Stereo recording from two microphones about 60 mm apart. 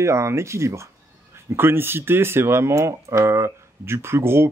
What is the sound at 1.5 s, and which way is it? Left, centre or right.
Speech, right.